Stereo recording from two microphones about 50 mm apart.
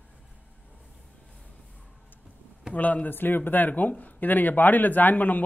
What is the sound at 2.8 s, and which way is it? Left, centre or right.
Speech, left.